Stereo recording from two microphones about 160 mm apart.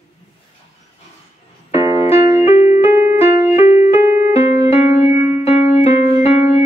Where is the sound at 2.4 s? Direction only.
45° left (ahead or behind).